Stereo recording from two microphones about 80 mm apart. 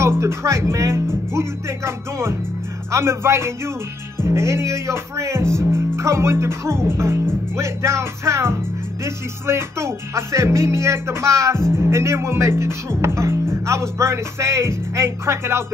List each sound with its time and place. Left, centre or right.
0.0 s speech: right
1.3 s music: right